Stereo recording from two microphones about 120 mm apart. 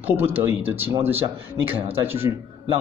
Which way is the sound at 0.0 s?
15° right (ahead or behind).